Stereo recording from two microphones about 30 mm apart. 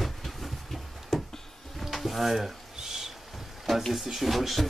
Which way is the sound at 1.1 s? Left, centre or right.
Centre.